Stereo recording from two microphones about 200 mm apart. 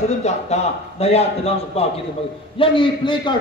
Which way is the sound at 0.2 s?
30° left (ahead or behind).